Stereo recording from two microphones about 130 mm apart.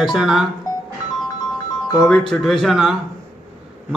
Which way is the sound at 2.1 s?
5° left (ahead or behind).